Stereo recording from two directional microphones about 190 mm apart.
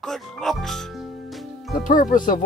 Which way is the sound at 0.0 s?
Centre (ahead or behind).